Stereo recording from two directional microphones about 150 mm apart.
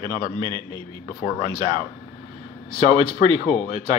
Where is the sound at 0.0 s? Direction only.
30° right (ahead or behind).